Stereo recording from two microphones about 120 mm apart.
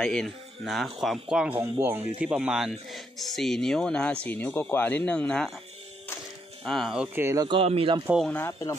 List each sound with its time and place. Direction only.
0.0 s speech: 5° left (ahead or behind)
1.6 s speech: 20° right (ahead or behind); by 5.5 s 10° left (ahead or behind)
6.6 s speech: centre (ahead or behind)
7.2 s speech: 25° right (ahead or behind)
7.4 s speech: 50° right (ahead or behind)
8.3 s speech: 20° left (ahead or behind)